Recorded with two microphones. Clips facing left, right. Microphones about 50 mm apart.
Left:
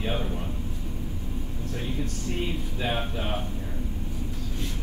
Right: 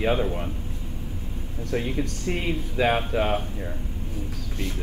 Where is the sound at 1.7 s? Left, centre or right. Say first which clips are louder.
Right 7 dB; right.